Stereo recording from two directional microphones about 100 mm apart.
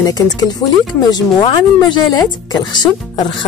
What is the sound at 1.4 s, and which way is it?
A woman's voice, 50° left (ahead or behind).